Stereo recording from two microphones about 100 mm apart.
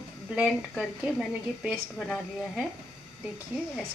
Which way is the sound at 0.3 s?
5° right (ahead or behind).